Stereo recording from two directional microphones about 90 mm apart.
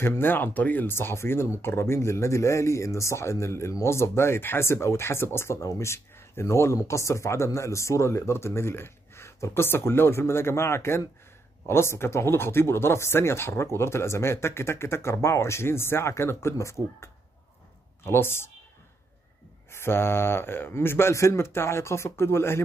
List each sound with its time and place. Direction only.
0.0 s speech: 25° left (ahead or behind)
18.0 s speech: 25° left (ahead or behind)
19.7 s speech: 25° left (ahead or behind)